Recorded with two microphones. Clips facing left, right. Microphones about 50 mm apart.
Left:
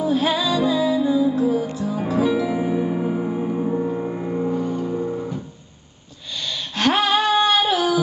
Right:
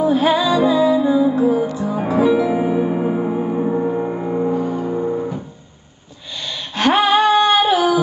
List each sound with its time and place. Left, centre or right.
0.0 s music: centre
4.9 s music: centre
6.4 s a sound: centre